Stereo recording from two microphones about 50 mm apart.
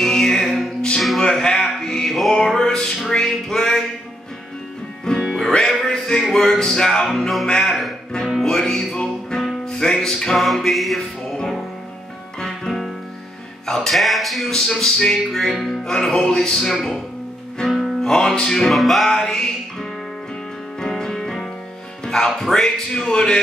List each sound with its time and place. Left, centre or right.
0.0 s music: centre
5.0 s music: centre
6.3 s speech: centre
7.4 s speech: centre
8.4 s music: centre
12.4 s music: centre
13.7 s speech: centre
15.8 s speech: centre
17.6 s music: centre
18.7 s speech: centre
20.8 s music: centre
22.0 s speech: centre